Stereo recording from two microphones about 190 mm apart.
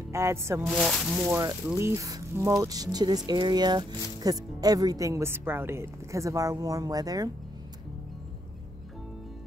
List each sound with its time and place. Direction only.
0.1 s speech: 15° right (ahead or behind)
0.7 s speech: centre (ahead or behind)
1.2 s speech: 15° right (ahead or behind)